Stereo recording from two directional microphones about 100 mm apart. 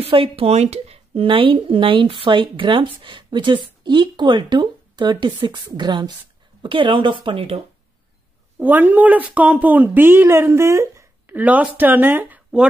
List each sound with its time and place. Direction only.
0.0 s speech: 70° right (ahead or behind)
8.5 s speech: 20° right (ahead or behind)
11.3 s speech: 15° right (ahead or behind)